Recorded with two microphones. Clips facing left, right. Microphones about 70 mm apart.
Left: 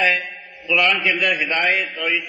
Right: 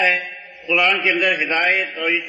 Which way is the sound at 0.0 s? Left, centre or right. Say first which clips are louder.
Right 1 dB; centre.